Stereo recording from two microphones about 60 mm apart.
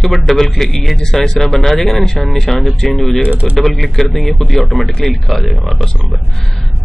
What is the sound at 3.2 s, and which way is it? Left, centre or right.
Speech, centre.